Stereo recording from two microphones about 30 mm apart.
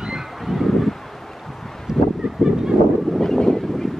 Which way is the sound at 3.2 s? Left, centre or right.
Centre.